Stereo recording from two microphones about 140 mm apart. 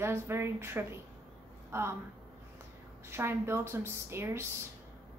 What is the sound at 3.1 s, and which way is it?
A woman's voice, 15° right (ahead or behind).